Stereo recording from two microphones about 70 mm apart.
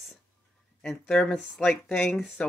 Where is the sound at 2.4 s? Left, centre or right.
Centre.